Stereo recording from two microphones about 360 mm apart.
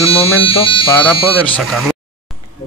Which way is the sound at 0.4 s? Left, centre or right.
Centre.